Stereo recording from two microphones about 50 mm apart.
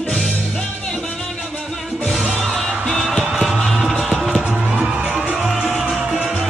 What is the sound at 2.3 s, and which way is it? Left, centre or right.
Music, centre.